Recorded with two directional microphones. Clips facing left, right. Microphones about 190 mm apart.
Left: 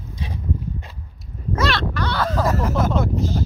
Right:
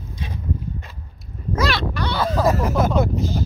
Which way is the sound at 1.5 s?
Centre (ahead or behind).